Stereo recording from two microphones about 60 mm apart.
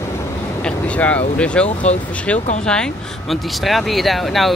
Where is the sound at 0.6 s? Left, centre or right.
Left.